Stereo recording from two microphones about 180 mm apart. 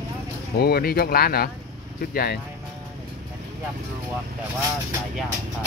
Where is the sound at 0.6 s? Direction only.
60° left (ahead or behind).